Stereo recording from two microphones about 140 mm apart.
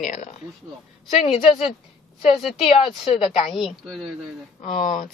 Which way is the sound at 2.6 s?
40° left (ahead or behind).